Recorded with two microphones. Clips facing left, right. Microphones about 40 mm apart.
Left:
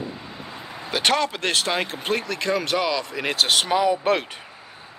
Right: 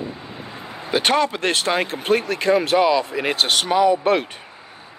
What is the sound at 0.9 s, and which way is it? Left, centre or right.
Speech, centre.